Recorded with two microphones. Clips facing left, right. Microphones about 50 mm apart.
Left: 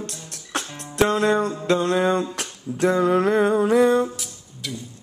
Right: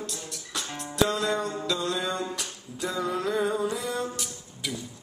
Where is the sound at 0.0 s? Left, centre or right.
Left.